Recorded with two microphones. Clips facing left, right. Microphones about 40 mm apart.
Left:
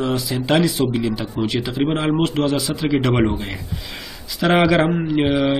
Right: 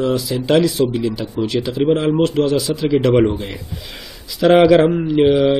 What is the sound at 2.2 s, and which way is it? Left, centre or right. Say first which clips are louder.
Speech: right 3 dB; centre.